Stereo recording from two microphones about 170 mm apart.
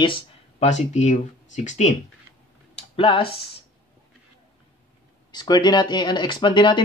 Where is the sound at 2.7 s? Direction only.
30° left (ahead or behind).